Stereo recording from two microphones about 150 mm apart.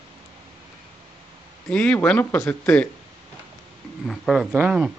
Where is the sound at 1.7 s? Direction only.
10° left (ahead or behind).